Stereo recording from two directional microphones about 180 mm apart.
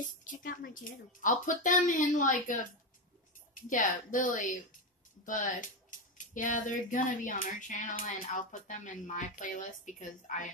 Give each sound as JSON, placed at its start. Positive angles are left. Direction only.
{"t": 0.2, "sound": "speech", "side_deg": 50}
{"t": 3.6, "sound": "speech", "side_deg": 45}